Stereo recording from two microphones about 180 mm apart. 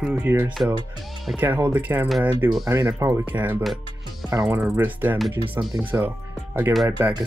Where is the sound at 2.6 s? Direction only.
15° right (ahead or behind).